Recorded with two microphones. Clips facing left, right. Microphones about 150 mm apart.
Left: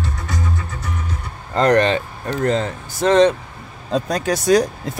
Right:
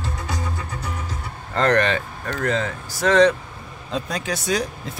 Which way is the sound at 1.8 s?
25° left (ahead or behind).